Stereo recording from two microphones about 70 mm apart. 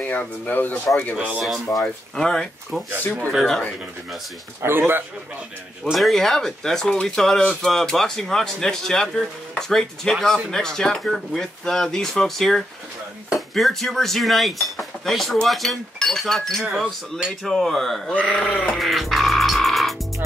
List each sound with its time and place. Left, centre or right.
0.0 s speech: left
1.1 s speech: right
1.4 s speech: centre
4.6 s a man's voice: right
5.9 s speech: centre
18.7 s music: centre